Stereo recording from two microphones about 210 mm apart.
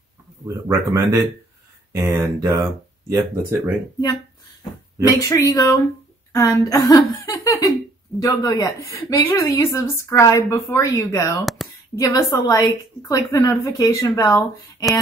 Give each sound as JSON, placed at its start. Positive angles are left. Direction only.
{"t": 0.7, "sound": "speech", "side_deg": -15}
{"t": 5.1, "sound": "a woman's voice", "side_deg": 15}